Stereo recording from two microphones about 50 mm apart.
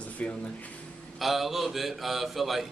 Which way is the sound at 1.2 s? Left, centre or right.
Centre.